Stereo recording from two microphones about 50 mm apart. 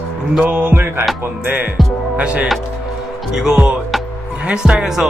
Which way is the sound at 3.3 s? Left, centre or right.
Centre.